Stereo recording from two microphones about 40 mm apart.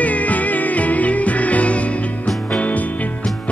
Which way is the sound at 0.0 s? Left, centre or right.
Left.